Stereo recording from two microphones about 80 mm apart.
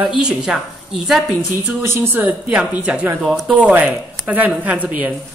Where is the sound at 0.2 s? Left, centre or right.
Centre.